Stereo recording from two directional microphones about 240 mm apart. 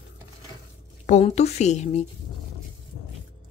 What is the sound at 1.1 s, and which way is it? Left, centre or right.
Speech, left.